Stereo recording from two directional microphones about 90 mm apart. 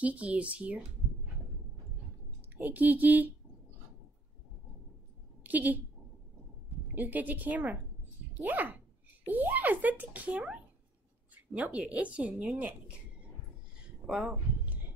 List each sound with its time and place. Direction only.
0.0 s speech: 15° right (ahead or behind)
2.5 s a woman's voice: 20° right (ahead or behind)
5.4 s a woman's voice: 20° right (ahead or behind)
7.0 s a woman's voice: 20° right (ahead or behind)
14.0 s speech: centre (ahead or behind)